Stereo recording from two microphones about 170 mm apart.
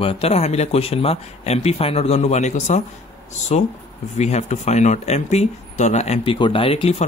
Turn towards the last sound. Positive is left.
turn(degrees=35)  # may be behind; listen again after turning